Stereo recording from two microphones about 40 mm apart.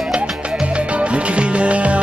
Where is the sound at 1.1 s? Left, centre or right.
Right.